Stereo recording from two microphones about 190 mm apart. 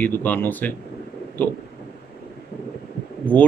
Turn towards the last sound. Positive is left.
turn(degrees=10)  # may be behind; listen again after turning